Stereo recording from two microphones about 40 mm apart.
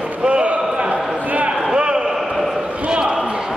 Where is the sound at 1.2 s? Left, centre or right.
Right.